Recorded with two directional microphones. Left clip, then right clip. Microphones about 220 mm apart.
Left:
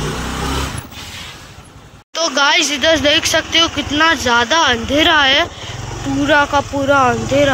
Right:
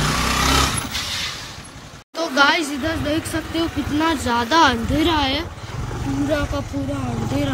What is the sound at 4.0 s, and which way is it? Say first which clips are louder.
Speech: left 8 dB; 5° right (ahead or behind).